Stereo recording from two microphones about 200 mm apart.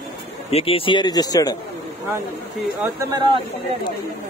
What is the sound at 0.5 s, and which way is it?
Speech, 30° left (ahead or behind).